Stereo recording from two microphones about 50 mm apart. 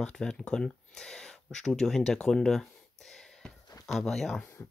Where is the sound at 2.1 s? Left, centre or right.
Centre.